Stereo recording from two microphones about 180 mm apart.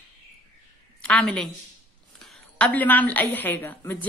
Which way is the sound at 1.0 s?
5° left (ahead or behind).